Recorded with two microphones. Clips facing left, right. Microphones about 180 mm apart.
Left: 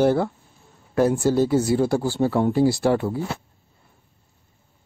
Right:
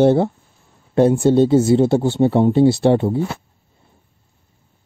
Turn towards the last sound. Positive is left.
turn(degrees=-25)  # may be behind; listen again after turning